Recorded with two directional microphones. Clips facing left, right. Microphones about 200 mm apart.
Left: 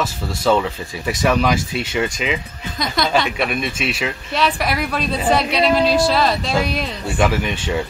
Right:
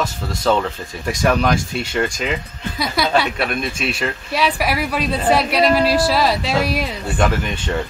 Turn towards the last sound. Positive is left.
turn(degrees=5)  # may be behind; listen again after turning